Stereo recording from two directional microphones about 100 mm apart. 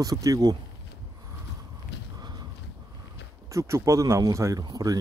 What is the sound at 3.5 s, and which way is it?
Speech, 30° right (ahead or behind).